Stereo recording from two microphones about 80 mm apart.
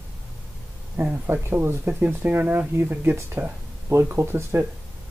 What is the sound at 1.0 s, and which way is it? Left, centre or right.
Speech, right.